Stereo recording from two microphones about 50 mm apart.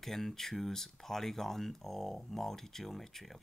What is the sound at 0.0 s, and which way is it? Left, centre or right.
Speech, centre.